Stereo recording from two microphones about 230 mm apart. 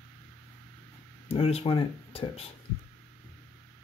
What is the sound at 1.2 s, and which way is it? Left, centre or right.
Speech, left.